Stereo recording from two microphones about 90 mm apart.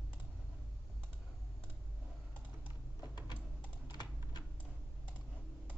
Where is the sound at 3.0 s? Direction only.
50° left (ahead or behind).